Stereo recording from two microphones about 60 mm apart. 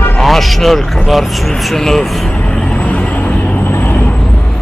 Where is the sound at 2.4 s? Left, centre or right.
Centre.